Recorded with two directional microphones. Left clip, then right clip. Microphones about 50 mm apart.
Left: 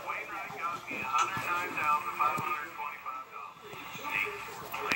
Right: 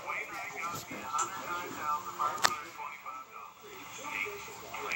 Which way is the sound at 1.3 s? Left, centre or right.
Left.